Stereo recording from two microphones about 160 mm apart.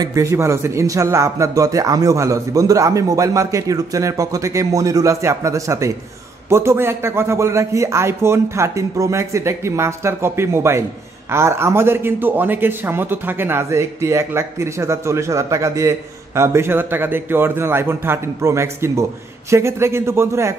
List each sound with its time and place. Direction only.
0.0 s a man's voice: 20° right (ahead or behind)